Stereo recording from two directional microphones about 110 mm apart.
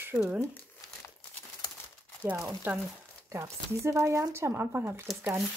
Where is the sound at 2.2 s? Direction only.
25° right (ahead or behind).